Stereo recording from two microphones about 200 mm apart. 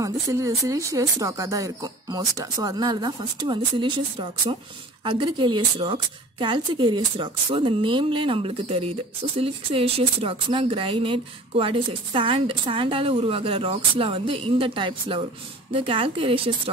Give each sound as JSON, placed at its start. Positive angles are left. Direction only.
{"t": 0.0, "sound": "speech", "side_deg": -15}